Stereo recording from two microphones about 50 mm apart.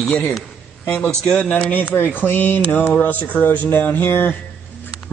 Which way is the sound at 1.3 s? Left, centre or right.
Left.